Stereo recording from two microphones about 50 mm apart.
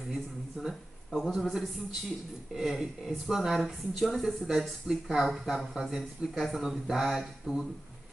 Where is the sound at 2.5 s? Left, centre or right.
Centre.